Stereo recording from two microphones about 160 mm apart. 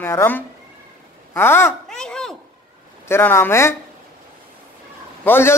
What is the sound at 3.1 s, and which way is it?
Speech, 15° left (ahead or behind).